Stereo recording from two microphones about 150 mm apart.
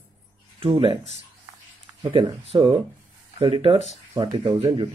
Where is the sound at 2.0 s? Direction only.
30° right (ahead or behind).